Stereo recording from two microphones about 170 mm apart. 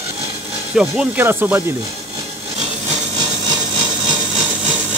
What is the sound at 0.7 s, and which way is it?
Speech, 5° right (ahead or behind).